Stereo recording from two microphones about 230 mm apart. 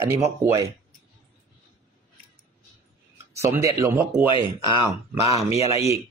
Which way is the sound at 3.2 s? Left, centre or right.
Centre.